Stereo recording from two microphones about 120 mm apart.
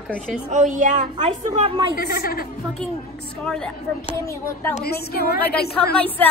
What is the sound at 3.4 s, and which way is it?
Speech, 5° left (ahead or behind).